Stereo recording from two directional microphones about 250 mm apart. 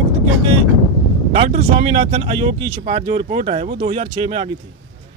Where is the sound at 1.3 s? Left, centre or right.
Right.